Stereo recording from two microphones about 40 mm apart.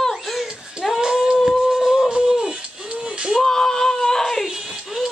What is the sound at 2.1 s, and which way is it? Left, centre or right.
Music, centre.